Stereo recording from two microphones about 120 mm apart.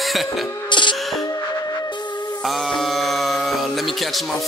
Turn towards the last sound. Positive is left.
turn(degrees=0)  # may be behind; listen again after turning